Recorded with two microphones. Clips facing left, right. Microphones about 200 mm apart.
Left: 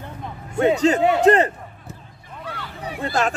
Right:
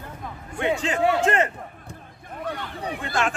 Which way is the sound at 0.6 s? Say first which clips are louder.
Left 7 dB; 40° left (ahead or behind).